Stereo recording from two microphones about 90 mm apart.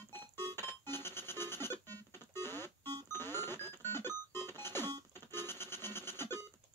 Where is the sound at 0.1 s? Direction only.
25° left (ahead or behind).